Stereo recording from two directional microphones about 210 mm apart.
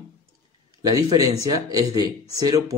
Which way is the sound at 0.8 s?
15° right (ahead or behind).